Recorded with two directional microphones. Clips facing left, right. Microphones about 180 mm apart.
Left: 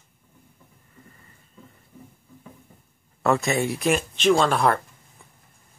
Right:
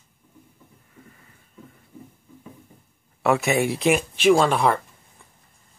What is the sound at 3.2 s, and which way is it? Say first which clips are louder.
Speech: right 2 dB; 5° right (ahead or behind).